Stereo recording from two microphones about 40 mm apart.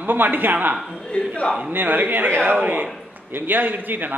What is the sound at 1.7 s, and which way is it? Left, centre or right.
A man's voice, right.